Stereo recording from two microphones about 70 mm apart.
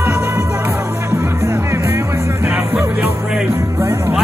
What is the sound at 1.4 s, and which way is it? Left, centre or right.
Music, right.